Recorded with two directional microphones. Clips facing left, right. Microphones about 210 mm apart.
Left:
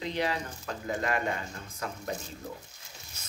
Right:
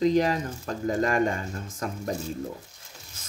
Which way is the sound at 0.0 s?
40° right (ahead or behind).